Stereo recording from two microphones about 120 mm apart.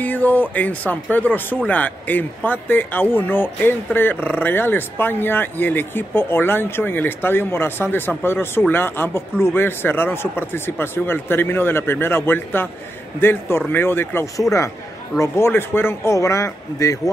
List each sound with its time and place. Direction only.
0.0 s a man's voice: 15° left (ahead or behind)